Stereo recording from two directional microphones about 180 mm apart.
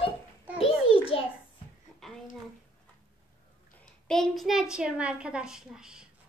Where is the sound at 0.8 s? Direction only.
30° left (ahead or behind).